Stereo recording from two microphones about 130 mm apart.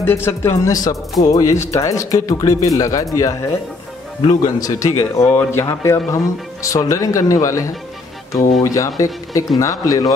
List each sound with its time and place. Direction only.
0.0 s speech: 20° left (ahead or behind)
4.4 s speech: 30° left (ahead or behind)